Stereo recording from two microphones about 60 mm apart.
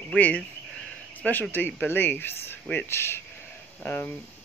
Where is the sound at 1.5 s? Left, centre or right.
Left.